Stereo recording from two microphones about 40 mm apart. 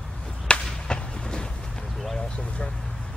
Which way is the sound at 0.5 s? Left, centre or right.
Left.